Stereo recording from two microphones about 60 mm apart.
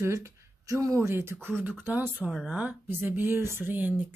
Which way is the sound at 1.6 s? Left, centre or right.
Right.